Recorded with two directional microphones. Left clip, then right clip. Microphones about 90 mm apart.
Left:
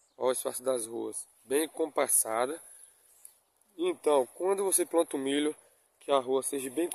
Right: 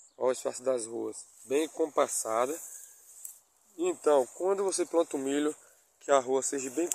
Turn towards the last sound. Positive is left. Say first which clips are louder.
# even
turn(degrees=20)  # may be behind; listen again after turning